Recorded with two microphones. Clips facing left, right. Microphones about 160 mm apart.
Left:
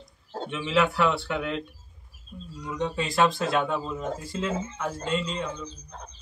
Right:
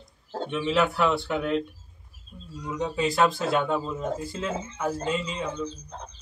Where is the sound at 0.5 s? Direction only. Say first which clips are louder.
Even; centre (ahead or behind).